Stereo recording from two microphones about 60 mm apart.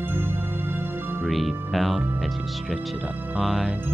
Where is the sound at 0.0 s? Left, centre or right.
Right.